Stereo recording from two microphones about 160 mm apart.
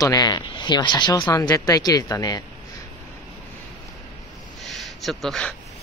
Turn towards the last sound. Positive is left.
turn(degrees=5)  # may be behind; listen again after turning